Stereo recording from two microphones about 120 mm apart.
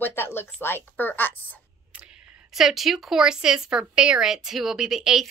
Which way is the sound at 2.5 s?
Centre (ahead or behind).